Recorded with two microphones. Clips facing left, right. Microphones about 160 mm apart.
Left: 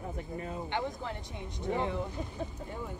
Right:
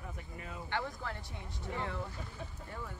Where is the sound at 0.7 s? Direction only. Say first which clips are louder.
Left 1 dB; 20° left (ahead or behind).